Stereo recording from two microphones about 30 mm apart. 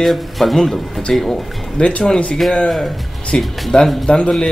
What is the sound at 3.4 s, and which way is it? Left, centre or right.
Music, centre.